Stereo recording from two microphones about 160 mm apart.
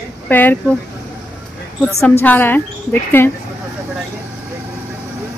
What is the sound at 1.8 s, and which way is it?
A woman's voice, 5° left (ahead or behind).